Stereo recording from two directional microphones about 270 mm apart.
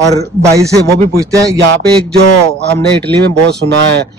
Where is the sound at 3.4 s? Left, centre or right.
Right.